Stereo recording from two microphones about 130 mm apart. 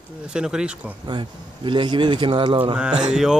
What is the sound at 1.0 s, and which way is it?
A man's voice, 35° right (ahead or behind).